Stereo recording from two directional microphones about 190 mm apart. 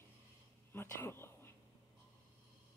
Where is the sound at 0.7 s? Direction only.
10° left (ahead or behind).